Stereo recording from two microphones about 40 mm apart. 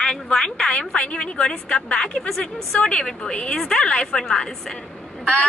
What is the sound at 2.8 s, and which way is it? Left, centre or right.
A woman's voice, left.